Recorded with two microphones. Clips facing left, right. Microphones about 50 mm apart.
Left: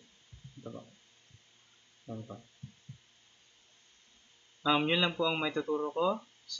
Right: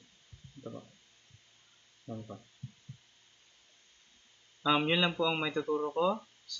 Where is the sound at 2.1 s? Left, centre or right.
Left.